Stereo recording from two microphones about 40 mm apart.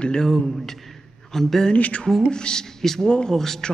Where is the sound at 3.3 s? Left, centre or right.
Centre.